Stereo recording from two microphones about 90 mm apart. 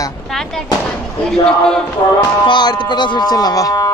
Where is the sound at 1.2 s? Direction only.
5° left (ahead or behind).